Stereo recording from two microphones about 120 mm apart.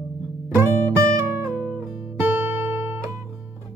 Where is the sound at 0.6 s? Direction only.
20° right (ahead or behind).